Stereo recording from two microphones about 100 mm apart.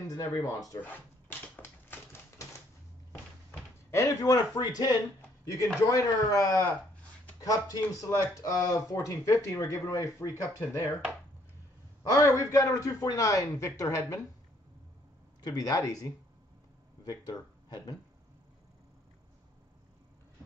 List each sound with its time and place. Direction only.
0.1 s speech: 40° left (ahead or behind)
3.9 s speech: 35° left (ahead or behind)
5.4 s speech: 30° left (ahead or behind)
12.0 s speech: 30° left (ahead or behind)
15.4 s speech: 40° left (ahead or behind)